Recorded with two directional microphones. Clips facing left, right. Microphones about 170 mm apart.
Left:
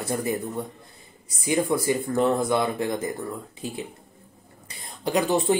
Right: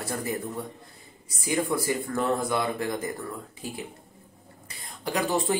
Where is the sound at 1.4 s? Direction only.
20° left (ahead or behind).